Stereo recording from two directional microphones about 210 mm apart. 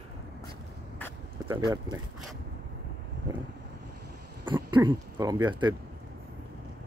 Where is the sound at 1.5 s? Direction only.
20° right (ahead or behind).